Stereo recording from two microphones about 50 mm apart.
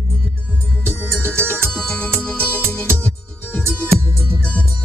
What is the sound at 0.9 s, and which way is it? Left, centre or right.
Music, right.